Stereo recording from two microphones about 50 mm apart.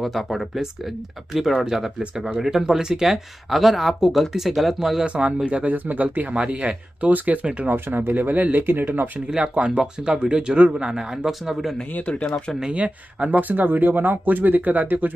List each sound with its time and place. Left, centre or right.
0.0 s speech: centre
5.0 s speech: right
7.7 s speech: right
9.3 s speech: centre
12.1 s speech: left
12.7 s speech: right